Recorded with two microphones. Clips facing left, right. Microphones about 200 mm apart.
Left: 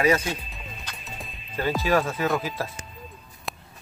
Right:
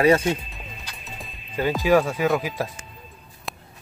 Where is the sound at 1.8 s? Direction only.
15° right (ahead or behind).